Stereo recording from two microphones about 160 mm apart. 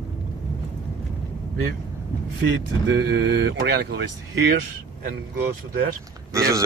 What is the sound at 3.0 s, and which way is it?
Speech, 90° right.